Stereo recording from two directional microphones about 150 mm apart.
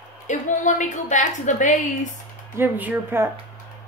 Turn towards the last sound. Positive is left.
turn(degrees=-15)  # may be behind; listen again after turning